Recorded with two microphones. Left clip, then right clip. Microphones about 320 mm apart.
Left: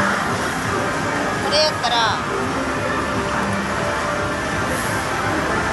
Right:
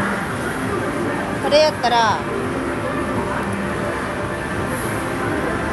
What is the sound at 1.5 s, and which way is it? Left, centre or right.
Speech, right.